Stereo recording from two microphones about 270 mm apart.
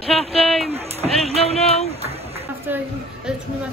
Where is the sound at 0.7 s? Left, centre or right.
Right.